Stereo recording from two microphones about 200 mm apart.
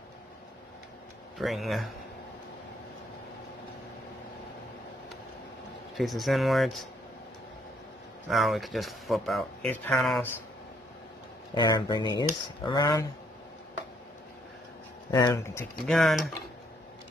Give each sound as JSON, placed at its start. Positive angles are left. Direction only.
{"t": 1.4, "sound": "speech", "side_deg": 0}
{"t": 5.9, "sound": "speech", "side_deg": 0}
{"t": 8.3, "sound": "speech", "side_deg": 0}
{"t": 11.5, "sound": "speech", "side_deg": 20}
{"t": 15.0, "sound": "speech", "side_deg": 15}
{"t": 15.9, "sound": "speech", "side_deg": 0}